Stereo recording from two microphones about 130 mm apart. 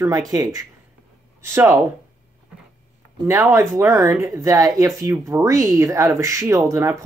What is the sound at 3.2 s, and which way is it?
Speech, 20° right (ahead or behind).